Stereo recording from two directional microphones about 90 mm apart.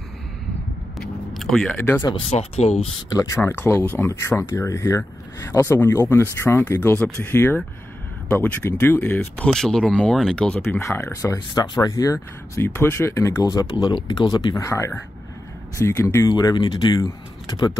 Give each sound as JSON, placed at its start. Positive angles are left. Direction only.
{"t": 0.9, "sound": "a sound", "side_deg": 0}
{"t": 1.8, "sound": "speech", "side_deg": 25}
{"t": 2.1, "sound": "speech", "side_deg": 90}
{"t": 3.1, "sound": "speech", "side_deg": 40}
{"t": 3.4, "sound": "speech", "side_deg": 25}
{"t": 9.5, "sound": "speech", "side_deg": 5}
{"t": 10.8, "sound": "speech", "side_deg": 35}
{"t": 11.9, "sound": "speech", "side_deg": 35}
{"t": 14.0, "sound": "speech", "side_deg": 45}
{"t": 16.3, "sound": "speech", "side_deg": 50}